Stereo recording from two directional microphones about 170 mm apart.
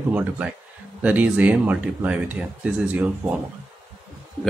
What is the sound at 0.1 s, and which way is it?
Speech, 10° right (ahead or behind).